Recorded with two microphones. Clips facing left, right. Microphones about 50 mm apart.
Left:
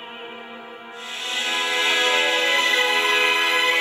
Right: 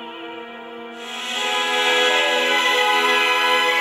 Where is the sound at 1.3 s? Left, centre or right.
Right.